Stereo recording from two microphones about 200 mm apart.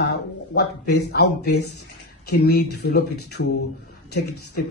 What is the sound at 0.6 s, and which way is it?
Speech, 55° left (ahead or behind).